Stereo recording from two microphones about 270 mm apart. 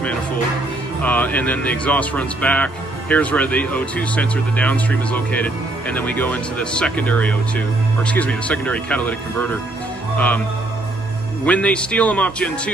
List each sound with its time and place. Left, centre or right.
1.0 s speech: centre
11.4 s speech: centre